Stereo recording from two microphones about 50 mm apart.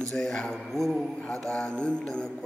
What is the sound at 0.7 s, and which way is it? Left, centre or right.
Speech, centre.